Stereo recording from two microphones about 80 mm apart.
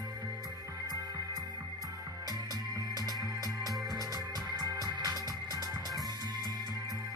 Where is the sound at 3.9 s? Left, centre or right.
Right.